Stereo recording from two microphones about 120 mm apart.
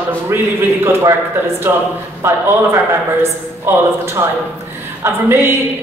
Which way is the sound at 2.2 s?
20° right (ahead or behind).